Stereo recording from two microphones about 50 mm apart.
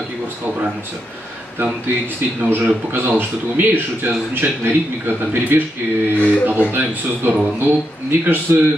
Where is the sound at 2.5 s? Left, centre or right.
Right.